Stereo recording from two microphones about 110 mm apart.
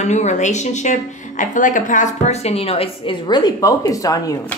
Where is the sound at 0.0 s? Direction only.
90° left.